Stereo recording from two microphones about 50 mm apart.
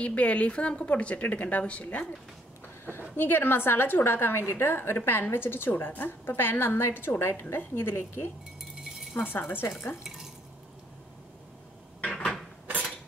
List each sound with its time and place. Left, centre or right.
0.0 s a woman's voice: left
2.8 s a woman's voice: left
10.0 s stir: centre
12.0 s a sound: left